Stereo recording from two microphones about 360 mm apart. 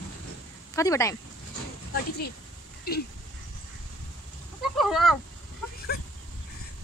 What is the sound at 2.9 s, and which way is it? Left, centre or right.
Speech, left.